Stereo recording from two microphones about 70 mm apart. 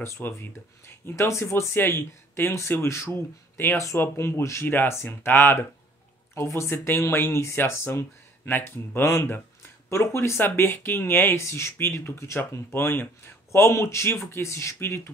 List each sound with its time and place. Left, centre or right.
0.0 s speech: left
4.6 s speech: left
12.4 s speech: left